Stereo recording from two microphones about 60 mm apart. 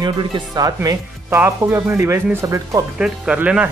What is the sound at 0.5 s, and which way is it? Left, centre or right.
Speech, right.